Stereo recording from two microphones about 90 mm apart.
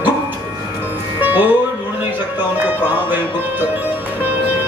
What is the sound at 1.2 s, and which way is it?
Music, 20° right (ahead or behind).